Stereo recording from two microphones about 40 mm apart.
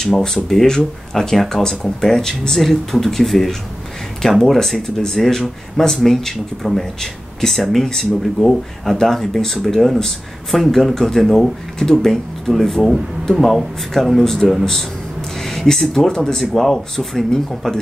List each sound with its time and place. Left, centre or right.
0.2 s speech: centre
10.6 s speech: centre
16.1 s speech: centre
16.3 s speech: centre